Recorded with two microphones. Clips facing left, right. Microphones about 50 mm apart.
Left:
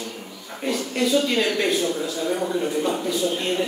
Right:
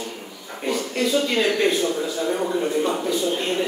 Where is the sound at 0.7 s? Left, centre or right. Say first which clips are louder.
Even; centre.